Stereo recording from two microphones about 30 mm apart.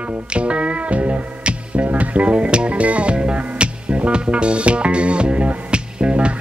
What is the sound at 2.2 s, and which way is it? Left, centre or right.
Music, right.